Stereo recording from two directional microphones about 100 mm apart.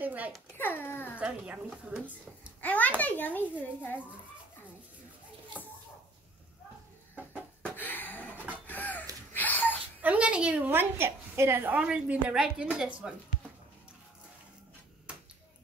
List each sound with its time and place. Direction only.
0.0 s a sound: 15° right (ahead or behind)
0.6 s speech: 20° left (ahead or behind)
1.2 s a woman's voice: 15° right (ahead or behind)
2.6 s a child's voice: 15° left (ahead or behind)
7.7 s a sound: 20° left (ahead or behind)
10.0 s a woman's voice: 10° right (ahead or behind)